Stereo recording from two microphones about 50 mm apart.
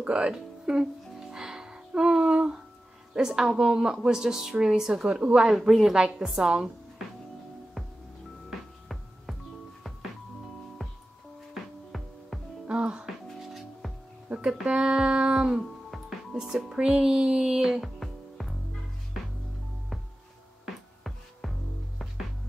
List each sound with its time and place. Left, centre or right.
0.0 s music: centre
3.2 s speech: centre
8.5 s music: centre
12.6 s music: right
13.0 s music: centre
14.3 s speech: centre
17.9 s music: centre
21.0 s music: centre